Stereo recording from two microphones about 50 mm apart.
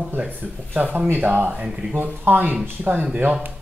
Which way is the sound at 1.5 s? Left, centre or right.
Centre.